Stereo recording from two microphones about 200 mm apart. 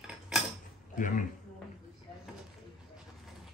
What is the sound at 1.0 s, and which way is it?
Speech, 40° left (ahead or behind).